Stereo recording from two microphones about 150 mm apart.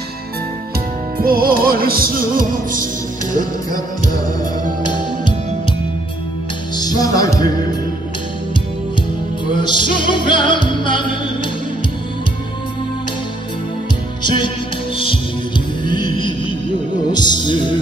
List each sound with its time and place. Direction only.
1.1 s music: 75° right (ahead or behind)
3.7 s music: 25° left (ahead or behind)
6.8 s music: 25° left (ahead or behind)
9.5 s music: 30° left (ahead or behind)
14.2 s music: 30° left (ahead or behind)
15.8 s music: 30° left (ahead or behind)